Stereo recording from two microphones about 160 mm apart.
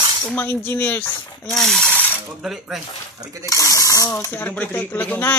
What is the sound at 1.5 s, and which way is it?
Speech, centre (ahead or behind).